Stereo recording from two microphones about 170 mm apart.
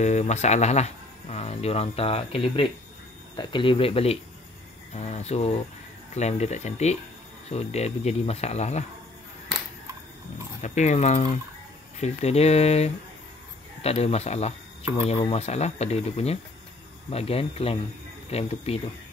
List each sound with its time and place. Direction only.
0.0 s speech: 45° left (ahead or behind)
10.6 s speech: 45° left (ahead or behind)